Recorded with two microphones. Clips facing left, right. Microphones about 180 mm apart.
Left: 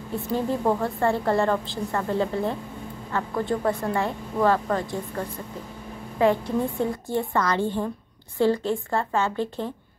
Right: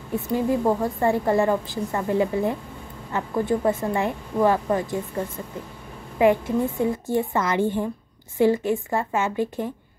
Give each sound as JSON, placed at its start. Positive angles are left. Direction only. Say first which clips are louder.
{"t": 0.1, "sound": "a woman's voice", "louder": "right 3 dB", "side_deg": -15}